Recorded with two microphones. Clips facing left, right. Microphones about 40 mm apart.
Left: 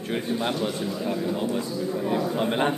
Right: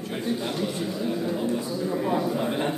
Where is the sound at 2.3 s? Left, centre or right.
Left.